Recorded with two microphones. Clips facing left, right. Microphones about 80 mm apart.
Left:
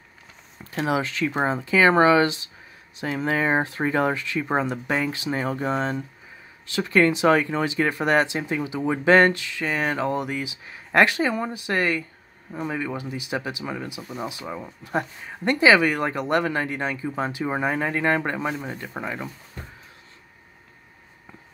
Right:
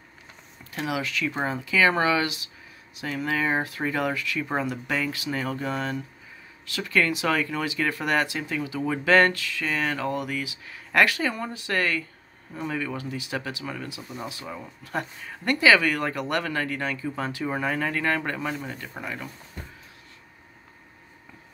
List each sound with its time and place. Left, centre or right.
0.7 s speech: left